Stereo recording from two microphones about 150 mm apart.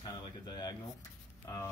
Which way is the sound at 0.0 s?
30° left (ahead or behind).